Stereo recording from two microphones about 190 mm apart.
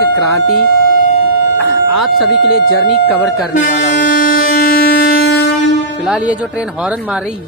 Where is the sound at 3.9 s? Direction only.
50° left (ahead or behind).